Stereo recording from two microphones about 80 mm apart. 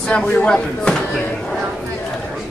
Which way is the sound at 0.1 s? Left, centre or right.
Centre.